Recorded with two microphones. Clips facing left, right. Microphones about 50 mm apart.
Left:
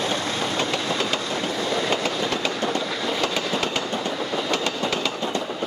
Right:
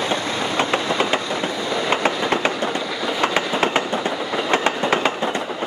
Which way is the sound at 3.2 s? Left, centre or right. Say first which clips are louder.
Right 7 dB; right.